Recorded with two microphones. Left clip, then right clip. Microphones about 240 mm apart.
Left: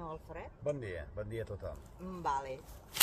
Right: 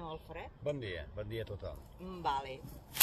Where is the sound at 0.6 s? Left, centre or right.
Centre.